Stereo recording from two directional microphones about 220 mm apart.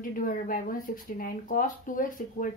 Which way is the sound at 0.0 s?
40° left (ahead or behind).